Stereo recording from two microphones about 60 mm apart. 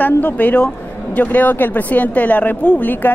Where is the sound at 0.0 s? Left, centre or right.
Left.